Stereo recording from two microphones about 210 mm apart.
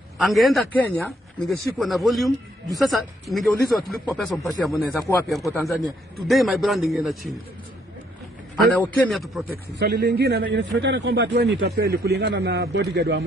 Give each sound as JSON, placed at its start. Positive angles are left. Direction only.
{"t": 0.2, "sound": "speech", "side_deg": 0}
{"t": 8.7, "sound": "speech", "side_deg": 5}
{"t": 9.8, "sound": "a man's voice", "side_deg": -50}